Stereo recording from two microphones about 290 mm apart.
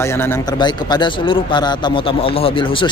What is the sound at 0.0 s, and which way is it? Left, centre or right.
A man's voice, centre.